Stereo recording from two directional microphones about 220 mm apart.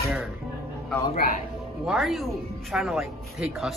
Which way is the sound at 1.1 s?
40° left (ahead or behind).